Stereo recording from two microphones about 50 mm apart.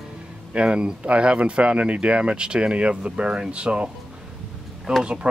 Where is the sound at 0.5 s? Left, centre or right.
Right.